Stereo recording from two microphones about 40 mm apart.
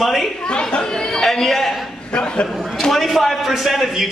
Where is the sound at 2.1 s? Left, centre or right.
Left.